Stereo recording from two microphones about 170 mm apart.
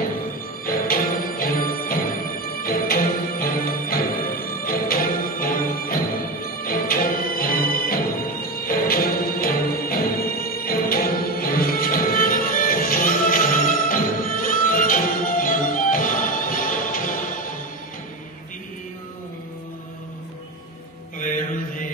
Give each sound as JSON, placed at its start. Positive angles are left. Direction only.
{"t": 0.7, "sound": "music", "side_deg": 55}
{"t": 21.2, "sound": "mantra", "side_deg": 50}